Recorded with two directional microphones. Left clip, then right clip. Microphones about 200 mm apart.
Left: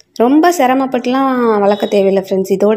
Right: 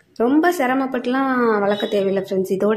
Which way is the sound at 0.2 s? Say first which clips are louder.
Left 7 dB; 30° left (ahead or behind).